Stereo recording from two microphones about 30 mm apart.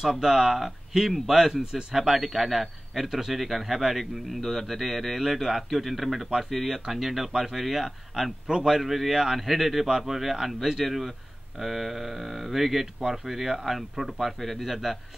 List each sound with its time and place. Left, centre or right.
0.0 s speech: centre
8.5 s speech: centre
9.4 s speech: centre
9.8 s speech: centre